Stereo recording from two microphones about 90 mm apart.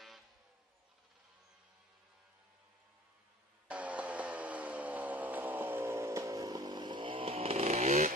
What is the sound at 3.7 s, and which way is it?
Music, 15° right (ahead or behind).